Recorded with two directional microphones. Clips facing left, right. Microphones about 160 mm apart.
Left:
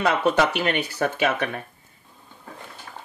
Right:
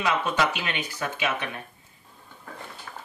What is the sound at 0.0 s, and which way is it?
Speech, 60° left (ahead or behind).